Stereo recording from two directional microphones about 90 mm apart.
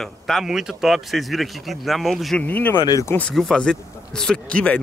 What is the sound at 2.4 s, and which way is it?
Speech, 20° left (ahead or behind).